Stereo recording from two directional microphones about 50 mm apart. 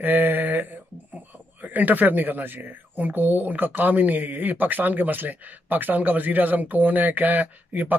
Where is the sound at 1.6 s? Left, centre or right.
Right.